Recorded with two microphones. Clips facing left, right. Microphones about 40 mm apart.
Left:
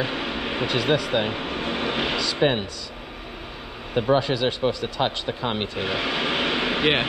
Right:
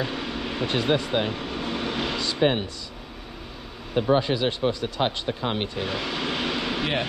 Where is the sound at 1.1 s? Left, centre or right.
Left.